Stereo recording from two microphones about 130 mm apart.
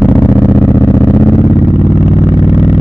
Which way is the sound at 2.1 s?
45° left (ahead or behind).